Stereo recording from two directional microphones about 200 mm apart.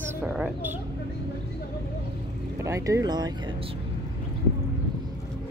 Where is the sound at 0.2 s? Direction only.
5° right (ahead or behind).